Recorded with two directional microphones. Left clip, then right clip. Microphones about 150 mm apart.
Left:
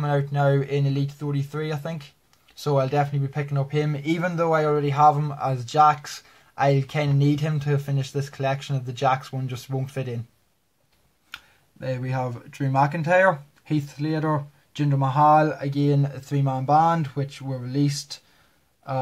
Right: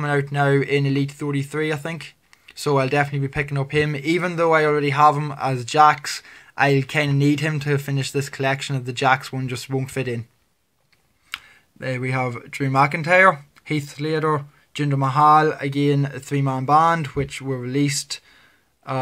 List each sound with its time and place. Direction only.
0.0 s speech: 25° right (ahead or behind)
11.9 s speech: 25° right (ahead or behind)